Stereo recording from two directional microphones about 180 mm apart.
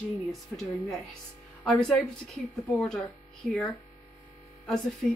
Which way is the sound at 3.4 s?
Centre (ahead or behind).